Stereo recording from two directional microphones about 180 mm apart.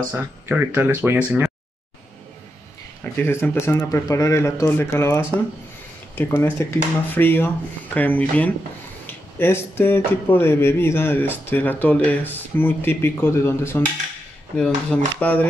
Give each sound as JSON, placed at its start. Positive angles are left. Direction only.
{"t": 0.1, "sound": "speech", "side_deg": -10}
{"t": 3.0, "sound": "speech", "side_deg": 15}